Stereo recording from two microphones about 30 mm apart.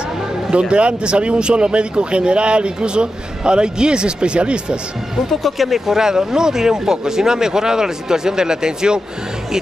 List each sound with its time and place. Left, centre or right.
0.5 s speech: right
5.3 s speech: centre
5.7 s speech: centre